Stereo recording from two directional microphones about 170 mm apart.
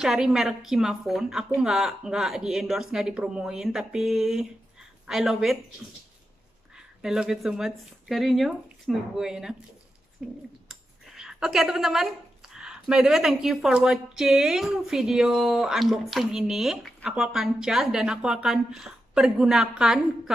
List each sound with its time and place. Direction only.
0.0 s speech: 5° right (ahead or behind)
7.0 s speech: 5° right (ahead or behind)
10.7 s a sound: 5° right (ahead or behind)
12.5 s speech: 5° right (ahead or behind)